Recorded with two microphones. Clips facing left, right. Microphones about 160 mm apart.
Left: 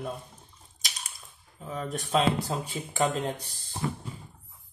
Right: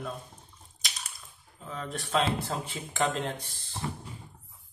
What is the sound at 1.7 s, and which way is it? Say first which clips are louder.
Speech: left 3 dB; 20° left (ahead or behind).